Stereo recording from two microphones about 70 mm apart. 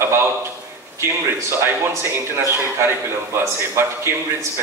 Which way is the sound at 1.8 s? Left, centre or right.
Right.